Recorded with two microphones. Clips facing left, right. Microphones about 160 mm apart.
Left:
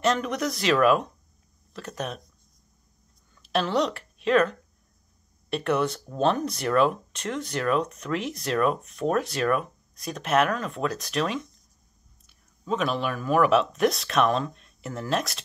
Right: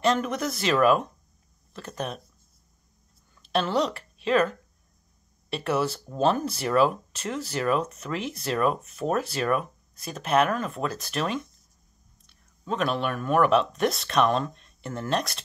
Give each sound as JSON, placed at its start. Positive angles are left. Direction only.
{"t": 0.0, "sound": "speech", "side_deg": 0}
{"t": 3.4, "sound": "speech", "side_deg": 0}